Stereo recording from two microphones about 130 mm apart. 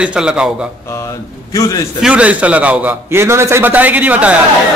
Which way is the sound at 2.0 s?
10° right (ahead or behind).